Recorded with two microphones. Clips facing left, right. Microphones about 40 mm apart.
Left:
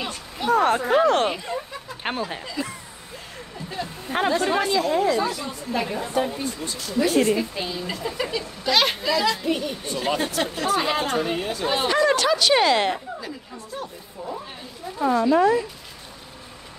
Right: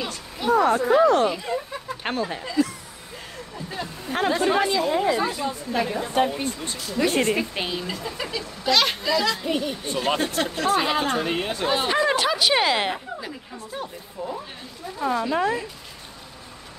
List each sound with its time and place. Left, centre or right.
0.5 s speech: left
2.0 s speech: centre
3.8 s a sound: centre
4.3 s speech: centre
5.1 s speech: right
6.1 s speech: right
6.8 s speech: centre
7.1 s speech: right
7.8 s speech: centre
11.2 s speech: right
11.9 s speech: centre
13.7 s a sound: centre
15.0 s speech: centre